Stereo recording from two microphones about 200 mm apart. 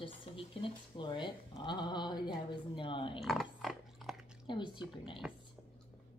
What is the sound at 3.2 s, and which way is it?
Pig, centre (ahead or behind).